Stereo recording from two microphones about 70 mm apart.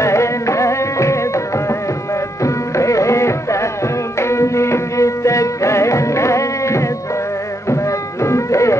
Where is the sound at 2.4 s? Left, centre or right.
Left.